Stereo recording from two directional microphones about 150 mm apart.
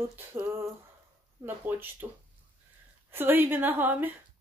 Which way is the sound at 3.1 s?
15° right (ahead or behind).